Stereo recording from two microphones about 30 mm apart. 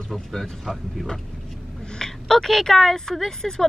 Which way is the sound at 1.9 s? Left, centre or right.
Centre.